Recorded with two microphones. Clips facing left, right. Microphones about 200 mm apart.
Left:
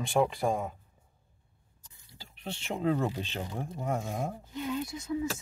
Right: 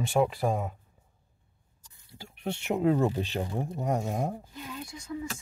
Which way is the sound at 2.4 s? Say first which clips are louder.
Right 4 dB; 10° right (ahead or behind).